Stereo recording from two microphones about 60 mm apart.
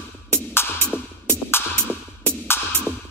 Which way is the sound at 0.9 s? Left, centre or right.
Left.